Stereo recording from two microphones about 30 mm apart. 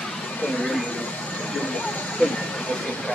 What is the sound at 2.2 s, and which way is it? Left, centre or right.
Speech, left.